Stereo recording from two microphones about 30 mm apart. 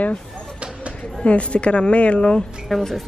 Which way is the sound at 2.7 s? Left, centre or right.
Centre.